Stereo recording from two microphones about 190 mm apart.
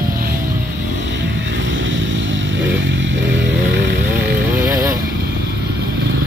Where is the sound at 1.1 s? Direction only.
70° right (ahead or behind).